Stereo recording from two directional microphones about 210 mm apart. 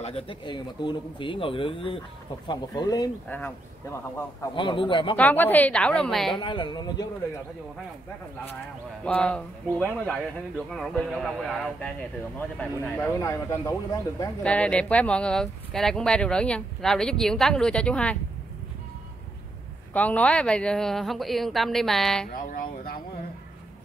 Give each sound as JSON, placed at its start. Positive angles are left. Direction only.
{"t": 0.0, "sound": "speech", "side_deg": 25}
{"t": 4.6, "sound": "speech", "side_deg": 25}
{"t": 5.1, "sound": "speech", "side_deg": 10}
{"t": 6.3, "sound": "speech", "side_deg": 20}
{"t": 9.0, "sound": "speech", "side_deg": 5}
{"t": 19.9, "sound": "speech", "side_deg": 5}
{"t": 22.3, "sound": "speech", "side_deg": 45}